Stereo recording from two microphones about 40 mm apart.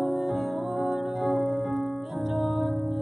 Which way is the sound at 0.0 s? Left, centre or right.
Centre.